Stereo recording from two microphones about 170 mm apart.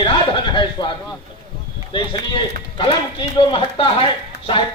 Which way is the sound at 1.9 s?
30° left (ahead or behind).